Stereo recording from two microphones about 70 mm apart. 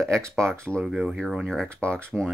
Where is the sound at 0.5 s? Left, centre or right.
Centre.